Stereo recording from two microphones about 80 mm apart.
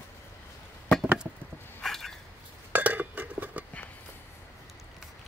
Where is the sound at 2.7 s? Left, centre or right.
Right.